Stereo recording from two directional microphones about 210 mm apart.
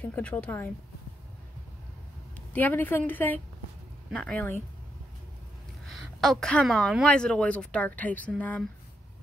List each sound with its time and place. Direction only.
0.0 s a woman's voice: 5° left (ahead or behind)
2.5 s a woman's voice: 10° left (ahead or behind)
5.9 s speech: centre (ahead or behind)